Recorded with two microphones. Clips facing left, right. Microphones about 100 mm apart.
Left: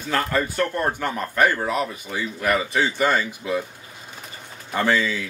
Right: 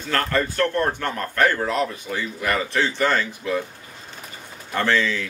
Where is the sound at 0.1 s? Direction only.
10° left (ahead or behind).